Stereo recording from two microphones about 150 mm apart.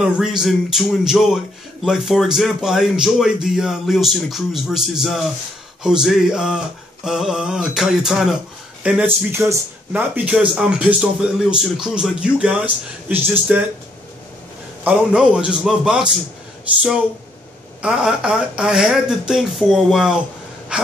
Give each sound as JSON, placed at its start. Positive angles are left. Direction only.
{"t": 0.0, "sound": "speech", "side_deg": -5}
{"t": 14.8, "sound": "speech", "side_deg": -10}
{"t": 17.8, "sound": "speech", "side_deg": -5}